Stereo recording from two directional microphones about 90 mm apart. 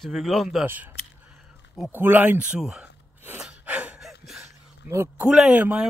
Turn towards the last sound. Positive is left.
turn(degrees=-10)  # may be behind; listen again after turning